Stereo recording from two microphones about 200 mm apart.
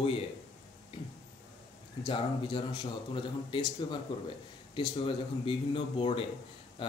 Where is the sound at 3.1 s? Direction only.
25° left (ahead or behind).